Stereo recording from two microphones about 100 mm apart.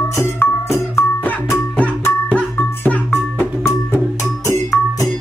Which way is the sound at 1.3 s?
15° left (ahead or behind).